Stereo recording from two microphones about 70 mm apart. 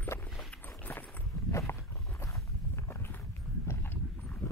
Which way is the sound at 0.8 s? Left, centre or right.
Left.